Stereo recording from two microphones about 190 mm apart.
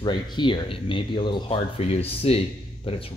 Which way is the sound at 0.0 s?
25° left (ahead or behind).